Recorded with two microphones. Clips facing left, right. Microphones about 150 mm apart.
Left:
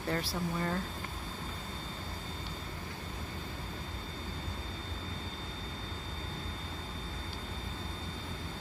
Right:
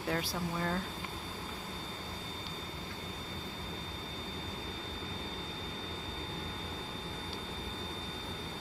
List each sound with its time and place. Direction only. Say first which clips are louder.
0.1 s speech: left 1 dB; centre (ahead or behind)